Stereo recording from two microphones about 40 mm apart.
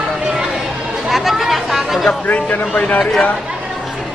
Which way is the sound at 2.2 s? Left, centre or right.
Left.